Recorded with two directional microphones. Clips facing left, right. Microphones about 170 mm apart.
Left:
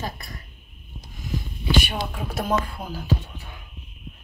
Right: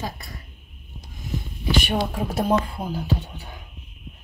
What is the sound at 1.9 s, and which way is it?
Speech, 30° right (ahead or behind).